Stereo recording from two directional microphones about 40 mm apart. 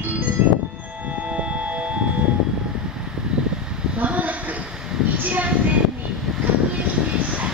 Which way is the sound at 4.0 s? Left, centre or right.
Right.